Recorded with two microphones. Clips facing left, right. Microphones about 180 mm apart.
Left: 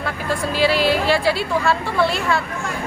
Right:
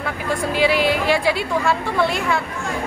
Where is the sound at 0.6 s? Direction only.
15° right (ahead or behind).